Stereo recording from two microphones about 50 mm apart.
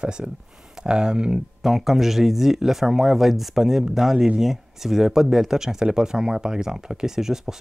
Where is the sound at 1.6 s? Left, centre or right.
Centre.